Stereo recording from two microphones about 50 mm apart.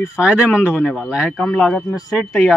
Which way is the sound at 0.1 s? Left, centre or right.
Centre.